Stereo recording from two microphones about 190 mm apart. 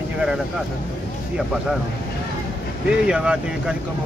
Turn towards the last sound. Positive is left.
turn(degrees=-5)  # may be behind; listen again after turning